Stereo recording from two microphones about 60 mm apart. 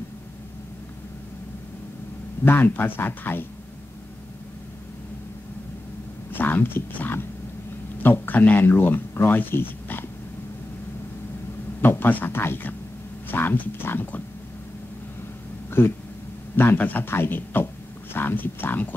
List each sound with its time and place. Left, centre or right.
2.4 s speech: left
6.3 s speech: left
11.8 s speech: left
16.5 s speech: left